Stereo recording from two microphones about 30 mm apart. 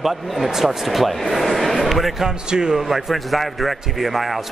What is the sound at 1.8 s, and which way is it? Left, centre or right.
Basketball bounce, centre.